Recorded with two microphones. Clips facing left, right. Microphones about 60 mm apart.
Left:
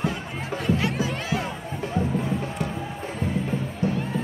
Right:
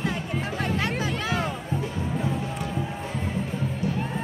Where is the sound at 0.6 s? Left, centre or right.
Right.